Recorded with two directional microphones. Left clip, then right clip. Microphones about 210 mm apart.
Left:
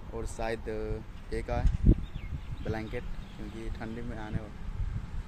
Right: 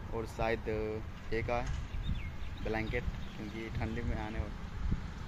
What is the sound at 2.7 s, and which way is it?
Speech, 10° left (ahead or behind).